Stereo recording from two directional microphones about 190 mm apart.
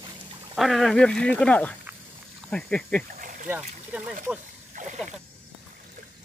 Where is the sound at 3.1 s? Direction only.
45° right (ahead or behind).